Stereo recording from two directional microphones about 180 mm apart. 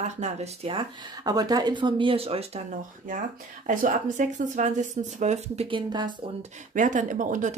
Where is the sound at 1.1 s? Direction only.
20° right (ahead or behind).